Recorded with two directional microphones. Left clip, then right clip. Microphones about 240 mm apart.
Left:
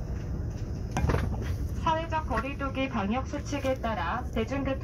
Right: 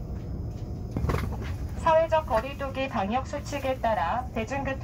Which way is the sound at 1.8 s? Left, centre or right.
Right.